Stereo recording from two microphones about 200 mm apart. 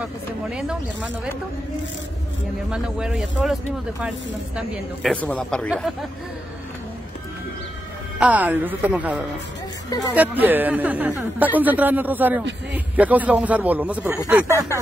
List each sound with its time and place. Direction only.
0.0 s a woman's voice: 5° right (ahead or behind)
2.7 s a woman's voice: 5° right (ahead or behind)
4.6 s a woman's voice: 5° left (ahead or behind)
8.2 s speech: 5° right (ahead or behind)
9.8 s speech: 20° left (ahead or behind)
10.1 s speech: 10° right (ahead or behind)